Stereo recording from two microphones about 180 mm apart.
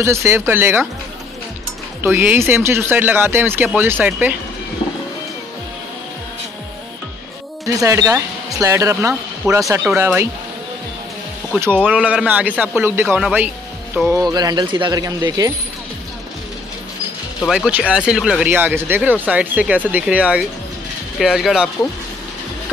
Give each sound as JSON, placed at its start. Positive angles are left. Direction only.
{"t": 0.0, "sound": "speech", "side_deg": -15}
{"t": 2.0, "sound": "speech", "side_deg": -10}
{"t": 7.8, "sound": "speech", "side_deg": -15}
{"t": 11.6, "sound": "speech", "side_deg": -10}
{"t": 14.3, "sound": "speech", "side_deg": -25}
{"t": 17.5, "sound": "speech", "side_deg": -5}